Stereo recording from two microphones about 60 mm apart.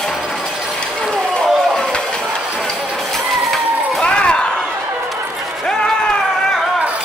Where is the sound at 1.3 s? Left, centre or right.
Centre.